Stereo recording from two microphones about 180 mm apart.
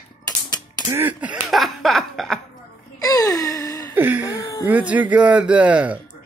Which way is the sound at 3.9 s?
10° right (ahead or behind).